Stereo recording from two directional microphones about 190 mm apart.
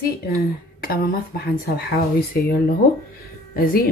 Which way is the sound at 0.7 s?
50° left (ahead or behind).